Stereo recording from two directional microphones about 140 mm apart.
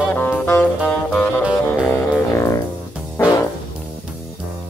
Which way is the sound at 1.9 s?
20° left (ahead or behind).